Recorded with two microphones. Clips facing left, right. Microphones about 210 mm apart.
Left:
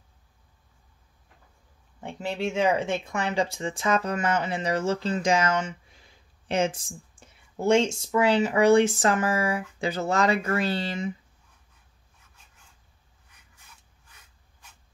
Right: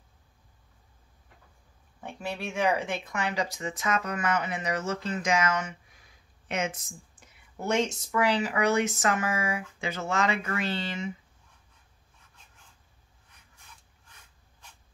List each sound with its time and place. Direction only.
2.0 s speech: 25° left (ahead or behind)